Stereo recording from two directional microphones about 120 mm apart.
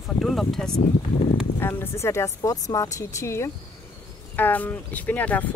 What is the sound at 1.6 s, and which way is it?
Speech, 20° left (ahead or behind).